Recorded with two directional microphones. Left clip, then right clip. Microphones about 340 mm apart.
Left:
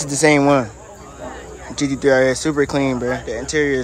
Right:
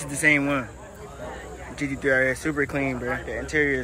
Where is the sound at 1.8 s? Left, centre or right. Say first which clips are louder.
Left 7 dB; centre.